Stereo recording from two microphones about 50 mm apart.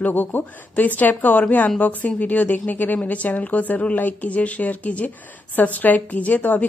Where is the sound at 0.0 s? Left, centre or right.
Left.